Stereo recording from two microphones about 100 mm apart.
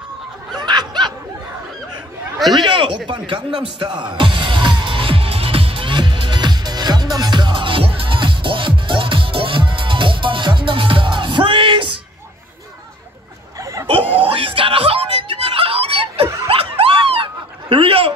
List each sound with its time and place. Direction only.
0.6 s snicker: 45° right (ahead or behind)
2.5 s speech: 55° right (ahead or behind)
3.1 s music: 55° right (ahead or behind)
13.6 s a sound: 35° right (ahead or behind)
14.2 s screaming: 65° right (ahead or behind)
16.4 s a sound: 75° right (ahead or behind)